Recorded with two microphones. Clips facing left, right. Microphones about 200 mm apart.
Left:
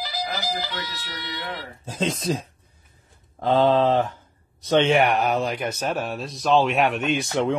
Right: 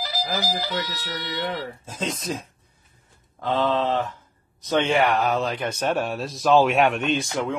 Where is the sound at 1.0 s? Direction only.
50° right (ahead or behind).